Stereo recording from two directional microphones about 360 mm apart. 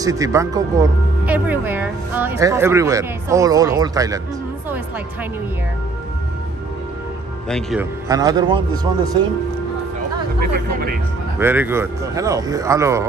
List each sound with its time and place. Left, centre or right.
0.0 s speech: centre
7.4 s speech: centre
10.4 s speech: right
11.3 s speech: centre